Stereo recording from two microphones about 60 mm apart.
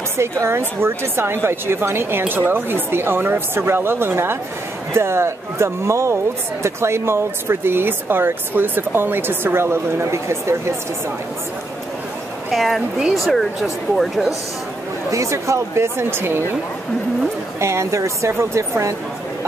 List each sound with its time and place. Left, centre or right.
0.2 s a woman's voice: right
12.4 s speech: centre
15.0 s speech: right
17.6 s speech: right